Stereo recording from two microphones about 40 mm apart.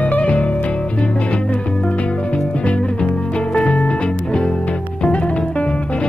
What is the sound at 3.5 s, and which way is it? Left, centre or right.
Music, left.